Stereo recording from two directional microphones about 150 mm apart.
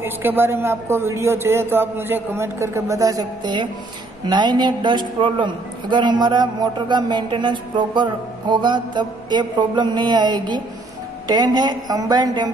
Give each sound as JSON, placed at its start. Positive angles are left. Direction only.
{"t": 0.0, "sound": "a man's voice", "side_deg": -15}